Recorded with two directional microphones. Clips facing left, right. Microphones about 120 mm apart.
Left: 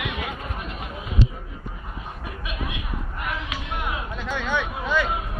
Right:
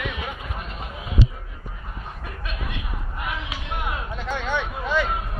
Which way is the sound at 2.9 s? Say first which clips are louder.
Left 1 dB; centre (ahead or behind).